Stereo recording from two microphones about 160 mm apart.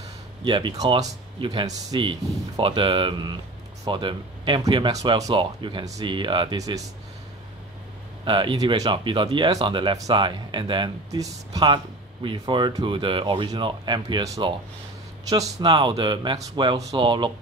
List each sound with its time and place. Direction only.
0.4 s speech: 30° right (ahead or behind)
8.3 s speech: 30° right (ahead or behind)